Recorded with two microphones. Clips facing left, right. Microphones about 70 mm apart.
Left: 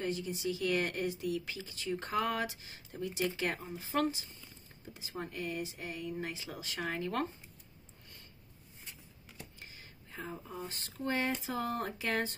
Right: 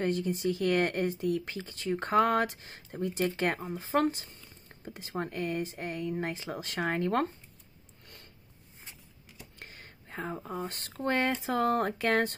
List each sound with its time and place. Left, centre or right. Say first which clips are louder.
0.0 s speech: right 6 dB; right
8.0 s sniff: right 4 dB; right
9.6 s speech: right 4 dB; right